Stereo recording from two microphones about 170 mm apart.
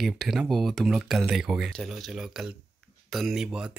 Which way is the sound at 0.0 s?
Centre (ahead or behind).